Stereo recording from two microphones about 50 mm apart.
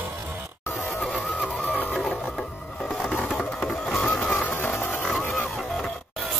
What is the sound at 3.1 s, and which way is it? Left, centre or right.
Music, left.